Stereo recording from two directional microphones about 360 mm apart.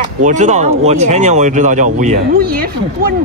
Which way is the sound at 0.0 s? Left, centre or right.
Centre.